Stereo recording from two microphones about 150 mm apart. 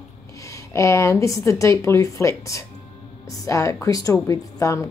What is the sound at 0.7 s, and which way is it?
Speech, 20° left (ahead or behind).